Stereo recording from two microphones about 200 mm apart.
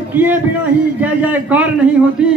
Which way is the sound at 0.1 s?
10° right (ahead or behind).